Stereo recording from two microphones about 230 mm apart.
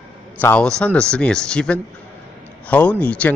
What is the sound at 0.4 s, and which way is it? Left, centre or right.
Speech, centre.